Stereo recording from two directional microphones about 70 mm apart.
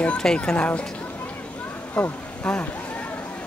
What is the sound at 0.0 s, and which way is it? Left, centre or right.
Speech, centre.